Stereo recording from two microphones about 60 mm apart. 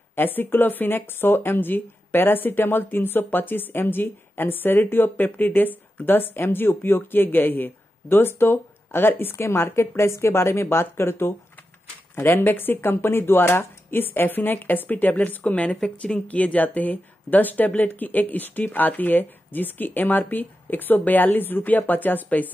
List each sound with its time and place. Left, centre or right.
0.1 s speech: left